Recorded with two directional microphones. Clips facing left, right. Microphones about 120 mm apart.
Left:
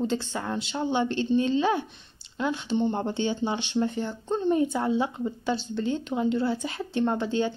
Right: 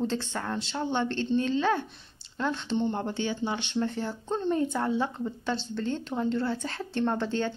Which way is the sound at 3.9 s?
Centre (ahead or behind).